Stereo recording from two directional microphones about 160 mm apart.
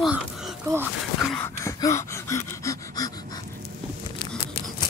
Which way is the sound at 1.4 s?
20° left (ahead or behind).